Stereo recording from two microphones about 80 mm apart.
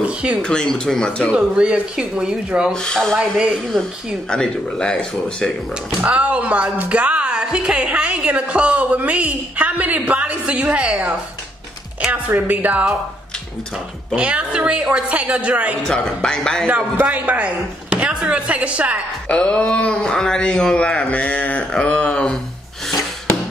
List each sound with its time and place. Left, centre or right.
0.0 s speech: centre
0.4 s speech: centre
1.3 s a woman's voice: centre
2.7 s speech: centre
4.3 s speech: centre
6.0 s a woman's voice: centre
12.3 s speech: right
14.1 s a woman's voice: centre
15.8 s speech: centre
16.6 s a woman's voice: right
19.2 s speech: centre